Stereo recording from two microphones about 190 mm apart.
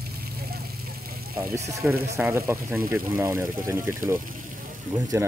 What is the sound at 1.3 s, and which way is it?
Speech, 15° right (ahead or behind).